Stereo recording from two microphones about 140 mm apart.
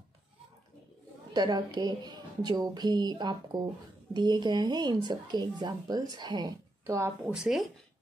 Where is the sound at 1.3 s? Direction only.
30° right (ahead or behind).